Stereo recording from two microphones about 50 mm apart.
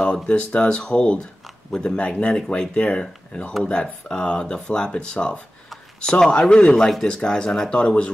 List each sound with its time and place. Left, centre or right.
0.0 s speech: centre
2.0 s speech: left; by 7.7 s centre
7.7 s speech: left